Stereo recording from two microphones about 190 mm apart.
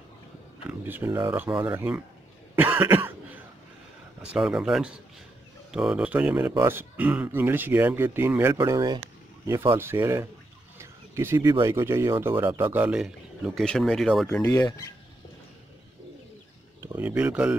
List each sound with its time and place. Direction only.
0.7 s speech: 10° right (ahead or behind)
2.5 s cough: 10° right (ahead or behind)
4.2 s speech: 5° right (ahead or behind)
10.8 s a sound: 15° right (ahead or behind)
11.6 s speech: 15° right (ahead or behind); by 14.9 s 15° left (ahead or behind)
16.8 s speech: 10° right (ahead or behind)